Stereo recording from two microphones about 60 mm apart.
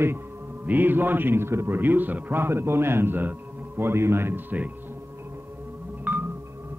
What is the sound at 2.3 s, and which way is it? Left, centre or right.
A man's voice, right.